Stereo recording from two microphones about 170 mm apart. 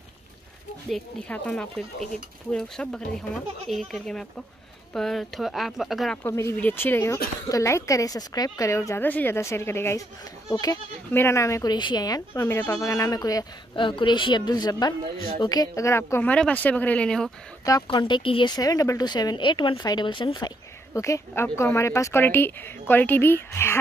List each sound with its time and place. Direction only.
0.8 s speech: centre (ahead or behind)
6.2 s a woman's voice: 15° left (ahead or behind)
17.6 s speech: 25° left (ahead or behind)